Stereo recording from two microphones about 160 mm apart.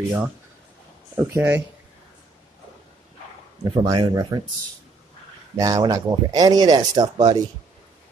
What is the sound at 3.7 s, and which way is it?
Speech, 25° right (ahead or behind).